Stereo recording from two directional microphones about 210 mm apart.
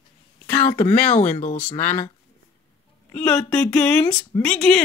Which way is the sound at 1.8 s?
10° left (ahead or behind).